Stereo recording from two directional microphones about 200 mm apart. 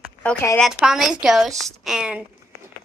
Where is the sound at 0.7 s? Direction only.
Centre (ahead or behind).